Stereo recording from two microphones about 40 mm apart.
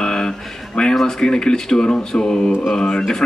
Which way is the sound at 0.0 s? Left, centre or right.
Centre.